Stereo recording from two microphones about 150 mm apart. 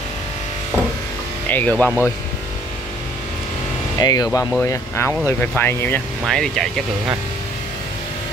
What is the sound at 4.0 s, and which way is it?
Speech, 25° left (ahead or behind).